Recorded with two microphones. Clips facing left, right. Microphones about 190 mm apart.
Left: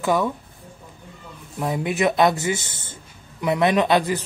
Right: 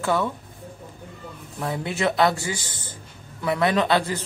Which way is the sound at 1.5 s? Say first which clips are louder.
Left 4 dB; 15° left (ahead or behind).